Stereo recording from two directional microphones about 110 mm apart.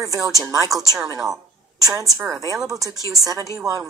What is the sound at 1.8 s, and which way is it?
A woman's voice, 30° right (ahead or behind).